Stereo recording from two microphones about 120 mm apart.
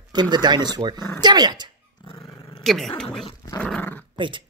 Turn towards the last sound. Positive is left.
turn(degrees=10)  # may be behind; listen again after turning